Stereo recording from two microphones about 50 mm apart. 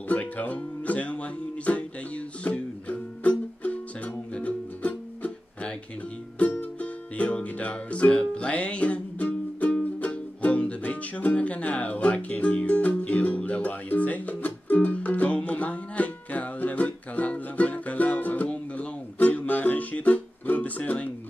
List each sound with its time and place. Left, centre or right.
0.1 s music: left